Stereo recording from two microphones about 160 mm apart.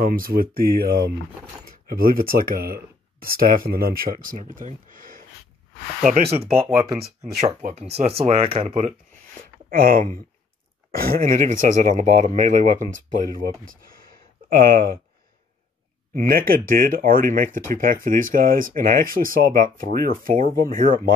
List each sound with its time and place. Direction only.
0.0 s speech: 65° right (ahead or behind)
6.0 s speech: 45° right (ahead or behind)
9.7 s speech: 60° right (ahead or behind)
13.7 s a sound: 65° right (ahead or behind)
16.2 s speech: 65° right (ahead or behind)